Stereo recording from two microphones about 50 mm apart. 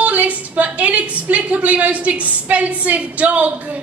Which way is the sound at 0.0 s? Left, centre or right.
Right.